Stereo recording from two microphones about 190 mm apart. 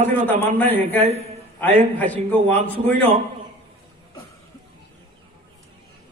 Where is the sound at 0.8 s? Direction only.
30° right (ahead or behind).